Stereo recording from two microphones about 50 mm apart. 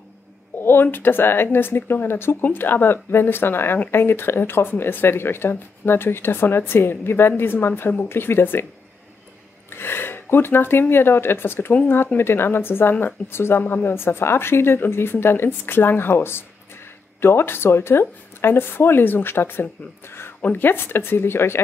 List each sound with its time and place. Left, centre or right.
0.6 s a sound: left
0.9 s speech: left
9.7 s speech: left